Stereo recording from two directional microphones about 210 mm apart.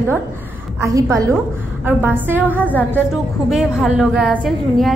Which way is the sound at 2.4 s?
10° left (ahead or behind).